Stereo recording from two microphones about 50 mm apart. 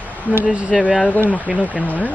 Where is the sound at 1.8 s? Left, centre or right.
Left.